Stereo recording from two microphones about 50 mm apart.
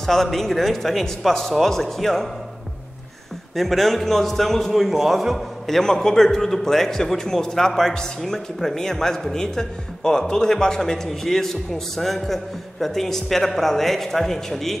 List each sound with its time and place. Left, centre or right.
0.0 s a man's voice: centre
3.5 s a man's voice: centre
5.7 s a man's voice: centre